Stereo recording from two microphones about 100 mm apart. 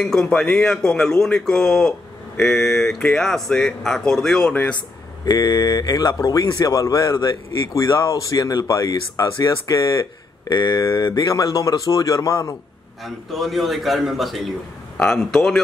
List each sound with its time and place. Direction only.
0.0 s a man's voice: 5° left (ahead or behind)
5.2 s speech: 40° left (ahead or behind)
7.7 s speech: 30° left (ahead or behind)
10.4 s speech: 50° left (ahead or behind)
13.0 s a man's voice: centre (ahead or behind)